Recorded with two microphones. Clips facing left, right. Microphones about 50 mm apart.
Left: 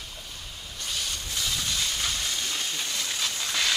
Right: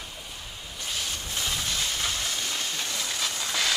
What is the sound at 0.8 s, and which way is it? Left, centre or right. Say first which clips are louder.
Rub: even; centre.